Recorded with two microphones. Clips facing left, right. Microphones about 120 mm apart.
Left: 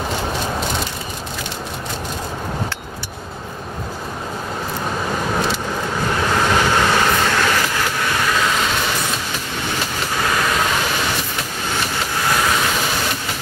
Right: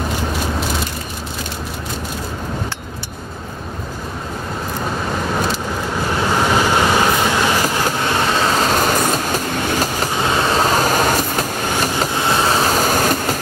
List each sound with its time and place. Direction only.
6.3 s vehicle: 10° right (ahead or behind)
7.8 s vehicle: 30° right (ahead or behind)
10.1 s vehicle: 25° right (ahead or behind); by 11.4 s 45° right (ahead or behind)
12.2 s vehicle: 25° right (ahead or behind); by 13.4 s 45° right (ahead or behind)